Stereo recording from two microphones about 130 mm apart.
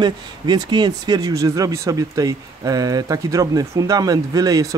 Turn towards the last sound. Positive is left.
turn(degrees=-25)  # may be behind; listen again after turning